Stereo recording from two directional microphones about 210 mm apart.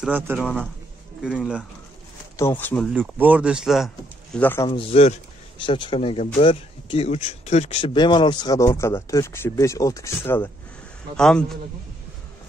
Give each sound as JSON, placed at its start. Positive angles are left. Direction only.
{"t": 0.0, "sound": "speech", "side_deg": -5}
{"t": 2.3, "sound": "speech", "side_deg": 10}
{"t": 2.9, "sound": "speech", "side_deg": -10}
{"t": 4.6, "sound": "speech", "side_deg": 25}